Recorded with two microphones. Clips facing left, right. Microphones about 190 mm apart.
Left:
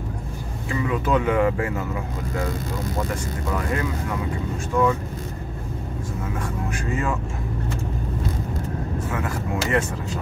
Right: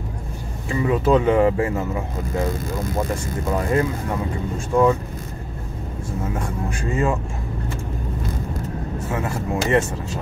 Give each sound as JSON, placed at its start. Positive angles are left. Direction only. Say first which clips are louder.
{"t": 0.7, "sound": "speech", "louder": "right 5 dB", "side_deg": -30}
{"t": 3.5, "sound": "speech", "louder": "right 5 dB", "side_deg": -30}
{"t": 6.4, "sound": "speech", "louder": "right 2 dB", "side_deg": -30}
{"t": 9.1, "sound": "speech", "louder": "right 5 dB", "side_deg": -25}